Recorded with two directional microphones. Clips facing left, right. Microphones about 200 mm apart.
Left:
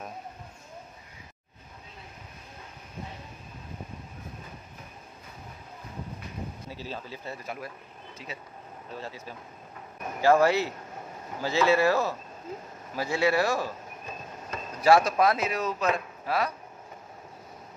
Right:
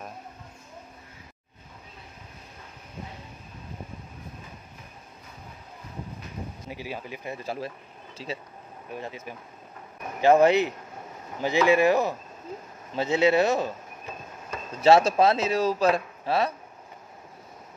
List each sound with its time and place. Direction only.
6.7 s speech: 15° right (ahead or behind)
7.4 s speech: 30° right (ahead or behind)
8.9 s speech: 20° right (ahead or behind)
14.8 s speech: 25° right (ahead or behind)